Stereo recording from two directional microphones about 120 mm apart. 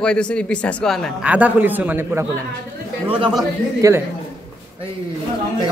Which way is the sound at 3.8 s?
25° right (ahead or behind).